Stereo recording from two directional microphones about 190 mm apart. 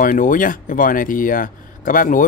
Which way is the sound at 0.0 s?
45° left (ahead or behind).